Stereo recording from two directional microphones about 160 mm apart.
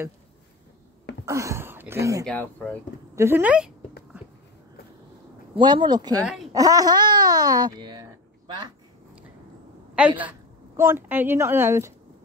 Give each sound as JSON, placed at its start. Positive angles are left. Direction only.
{"t": 1.2, "sound": "speech", "side_deg": -20}
{"t": 2.2, "sound": "speech", "side_deg": 10}
{"t": 3.2, "sound": "speech", "side_deg": -15}
{"t": 5.6, "sound": "speech", "side_deg": -30}
{"t": 9.9, "sound": "speech", "side_deg": -10}